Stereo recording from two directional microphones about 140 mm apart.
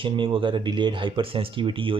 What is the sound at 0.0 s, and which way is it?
Speech, 35° right (ahead or behind).